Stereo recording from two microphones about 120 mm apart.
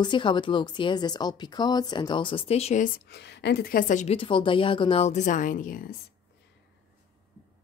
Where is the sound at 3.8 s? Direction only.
90° left.